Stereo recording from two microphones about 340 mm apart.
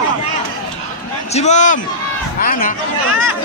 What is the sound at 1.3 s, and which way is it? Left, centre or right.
A man's voice, centre.